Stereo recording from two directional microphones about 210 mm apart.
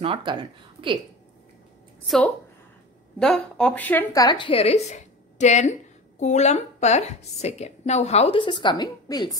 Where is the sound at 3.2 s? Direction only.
5° left (ahead or behind).